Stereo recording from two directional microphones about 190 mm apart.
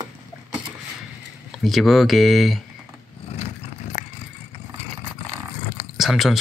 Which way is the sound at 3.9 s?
40° left (ahead or behind).